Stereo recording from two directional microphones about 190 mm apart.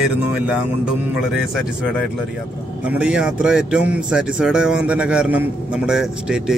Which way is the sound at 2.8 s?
5° right (ahead or behind).